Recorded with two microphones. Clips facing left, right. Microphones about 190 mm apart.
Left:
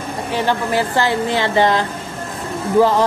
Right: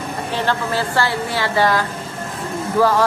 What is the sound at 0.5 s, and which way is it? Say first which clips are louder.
Speech: left 4 dB; 15° left (ahead or behind).